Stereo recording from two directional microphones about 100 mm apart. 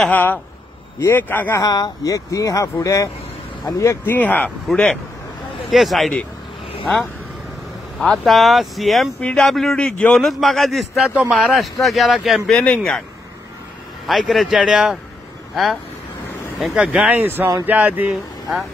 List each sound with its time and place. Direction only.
0.1 s speech: 20° left (ahead or behind)
1.6 s a man's voice: 40° left (ahead or behind); by 6.1 s centre (ahead or behind)
8.0 s a man's voice: 5° left (ahead or behind)
14.0 s a man's voice: centre (ahead or behind); by 18.1 s 15° right (ahead or behind)